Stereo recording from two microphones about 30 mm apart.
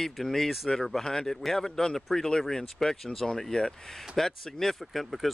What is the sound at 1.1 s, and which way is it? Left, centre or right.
Speech, left.